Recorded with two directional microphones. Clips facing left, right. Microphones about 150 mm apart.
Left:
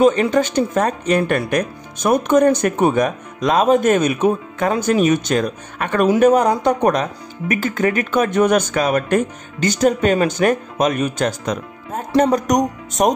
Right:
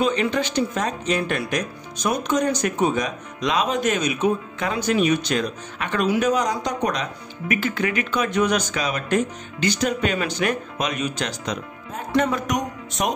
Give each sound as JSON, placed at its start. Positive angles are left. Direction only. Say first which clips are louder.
{"t": 0.0, "sound": "speech", "louder": "left 7 dB", "side_deg": 45}
{"t": 12.1, "sound": "speech", "louder": "left 6 dB", "side_deg": 40}